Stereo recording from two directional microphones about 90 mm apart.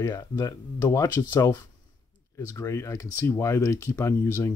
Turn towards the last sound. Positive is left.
turn(degrees=35)  # may be behind; listen again after turning